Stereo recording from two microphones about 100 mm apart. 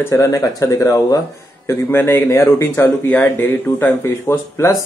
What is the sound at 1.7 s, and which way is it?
Speech, 25° left (ahead or behind).